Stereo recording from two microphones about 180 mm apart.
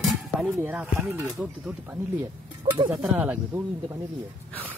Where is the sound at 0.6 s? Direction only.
10° right (ahead or behind).